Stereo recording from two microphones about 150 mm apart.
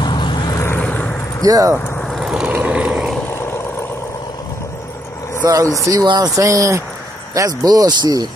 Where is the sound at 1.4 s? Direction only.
25° right (ahead or behind).